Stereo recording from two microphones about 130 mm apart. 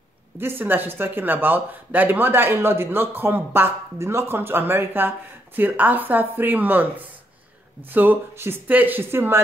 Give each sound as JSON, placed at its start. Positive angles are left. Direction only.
{"t": 0.4, "sound": "speech", "side_deg": -15}